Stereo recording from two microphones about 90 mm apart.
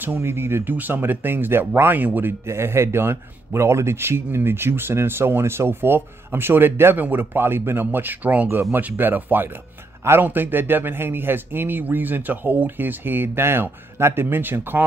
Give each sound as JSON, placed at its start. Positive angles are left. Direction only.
{"t": 0.0, "sound": "speech", "side_deg": -25}